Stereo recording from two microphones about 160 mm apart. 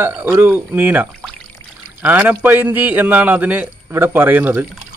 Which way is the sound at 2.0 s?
10° right (ahead or behind).